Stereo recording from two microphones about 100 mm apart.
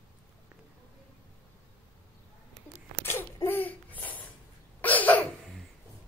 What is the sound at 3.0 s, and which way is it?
Babbling, 25° left (ahead or behind).